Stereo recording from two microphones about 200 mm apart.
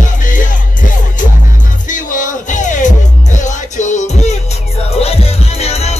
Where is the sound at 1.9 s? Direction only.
40° left (ahead or behind).